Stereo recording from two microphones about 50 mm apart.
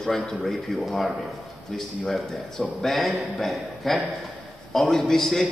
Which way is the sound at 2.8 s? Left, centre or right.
Centre.